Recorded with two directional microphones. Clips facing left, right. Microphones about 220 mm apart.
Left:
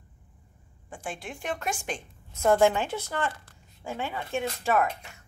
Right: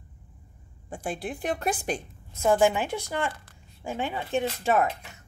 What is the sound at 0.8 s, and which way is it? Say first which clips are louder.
A woman's voice: right 5 dB; 35° right (ahead or behind).